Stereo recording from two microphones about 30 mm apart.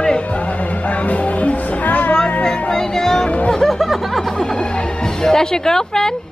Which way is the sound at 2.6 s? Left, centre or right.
Centre.